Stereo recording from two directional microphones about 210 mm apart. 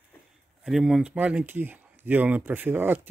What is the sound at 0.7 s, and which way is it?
Speech, centre (ahead or behind).